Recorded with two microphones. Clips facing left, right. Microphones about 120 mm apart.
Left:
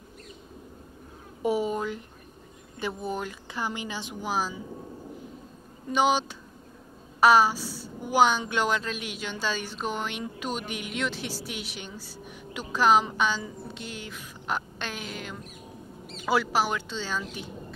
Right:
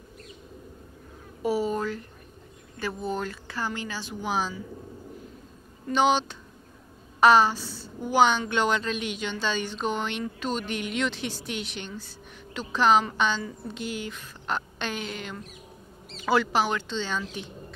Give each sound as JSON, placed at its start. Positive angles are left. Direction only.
{"t": 1.4, "sound": "a sound", "side_deg": 20}
{"t": 2.8, "sound": "speech", "side_deg": 10}
{"t": 4.2, "sound": "a woman's voice", "side_deg": 5}
{"t": 5.9, "sound": "a woman's voice", "side_deg": 10}